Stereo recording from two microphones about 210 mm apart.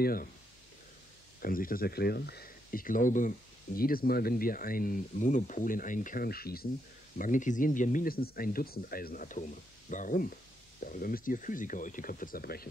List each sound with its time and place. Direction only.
0.0 s speech: 45° left (ahead or behind)
1.4 s speech: 45° left (ahead or behind)